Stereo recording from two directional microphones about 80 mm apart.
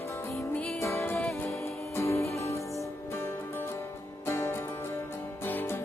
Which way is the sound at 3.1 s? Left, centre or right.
Left.